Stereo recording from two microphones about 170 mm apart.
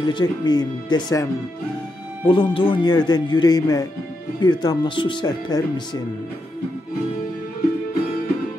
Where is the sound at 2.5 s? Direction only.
30° left (ahead or behind).